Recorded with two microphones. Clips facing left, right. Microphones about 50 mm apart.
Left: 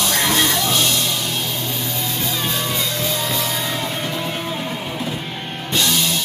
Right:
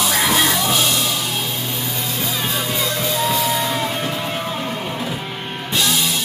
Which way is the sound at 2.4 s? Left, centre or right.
Centre.